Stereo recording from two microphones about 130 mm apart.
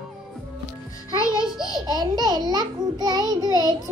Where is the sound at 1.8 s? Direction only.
30° right (ahead or behind).